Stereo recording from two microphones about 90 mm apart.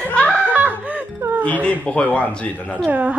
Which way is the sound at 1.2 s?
25° right (ahead or behind).